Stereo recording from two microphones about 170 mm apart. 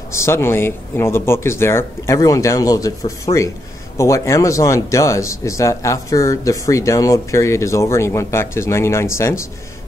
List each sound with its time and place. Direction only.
0.1 s speech: 15° left (ahead or behind)
3.3 s speech: 35° left (ahead or behind)
4.0 s speech: 15° left (ahead or behind)